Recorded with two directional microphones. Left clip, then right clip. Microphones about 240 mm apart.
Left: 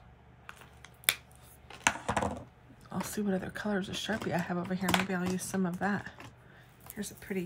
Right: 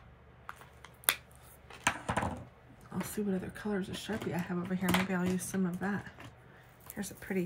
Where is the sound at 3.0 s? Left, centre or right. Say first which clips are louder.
Left 2 dB; left.